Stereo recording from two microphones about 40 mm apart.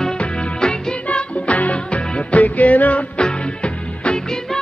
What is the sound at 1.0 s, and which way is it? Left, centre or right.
Music, left.